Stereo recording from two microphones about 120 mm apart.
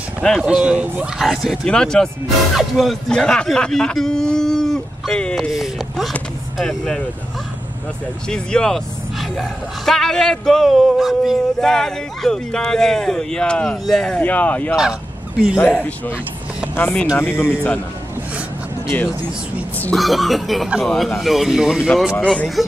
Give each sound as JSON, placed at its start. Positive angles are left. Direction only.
{"t": 0.4, "sound": "speech", "side_deg": -5}
{"t": 8.3, "sound": "speech", "side_deg": 5}
{"t": 14.8, "sound": "fowl", "side_deg": -5}
{"t": 15.5, "sound": "speech", "side_deg": 10}
{"t": 19.8, "sound": "speech", "side_deg": 5}
{"t": 22.1, "sound": "speech", "side_deg": 10}